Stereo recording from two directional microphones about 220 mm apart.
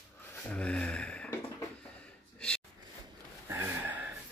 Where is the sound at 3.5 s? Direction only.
10° right (ahead or behind).